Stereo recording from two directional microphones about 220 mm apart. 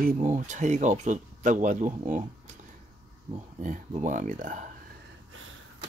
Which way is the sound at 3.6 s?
35° right (ahead or behind).